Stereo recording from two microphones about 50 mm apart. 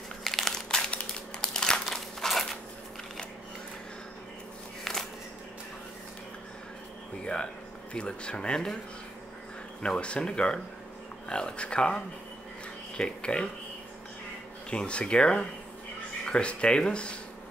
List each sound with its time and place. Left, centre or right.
0.2 s crumpling: centre
0.8 s crumpling: centre
1.9 s crumpling: centre
4.9 s a sound: centre
7.9 s speech: left
9.8 s speech: left
14.7 s speech: left